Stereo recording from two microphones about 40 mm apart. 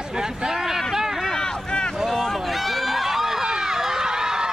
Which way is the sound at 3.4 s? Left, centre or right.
Centre.